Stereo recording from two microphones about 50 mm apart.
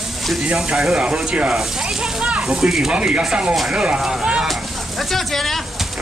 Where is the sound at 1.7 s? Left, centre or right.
Centre.